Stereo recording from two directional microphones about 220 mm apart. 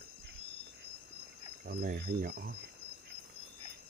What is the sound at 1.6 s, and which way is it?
Speech, 45° right (ahead or behind).